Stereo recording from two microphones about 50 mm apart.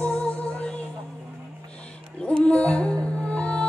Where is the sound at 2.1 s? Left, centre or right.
Left.